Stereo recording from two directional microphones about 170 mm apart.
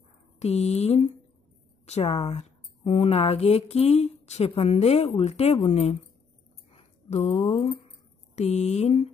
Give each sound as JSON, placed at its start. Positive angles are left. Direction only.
{"t": 0.4, "sound": "speech", "side_deg": 40}
{"t": 6.7, "sound": "a sound", "side_deg": 40}
{"t": 8.4, "sound": "speech", "side_deg": 40}